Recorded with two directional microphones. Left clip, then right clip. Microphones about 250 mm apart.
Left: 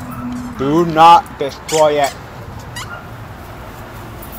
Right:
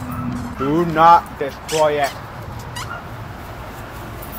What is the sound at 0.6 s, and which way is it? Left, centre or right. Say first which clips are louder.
Speech: left 4 dB; centre.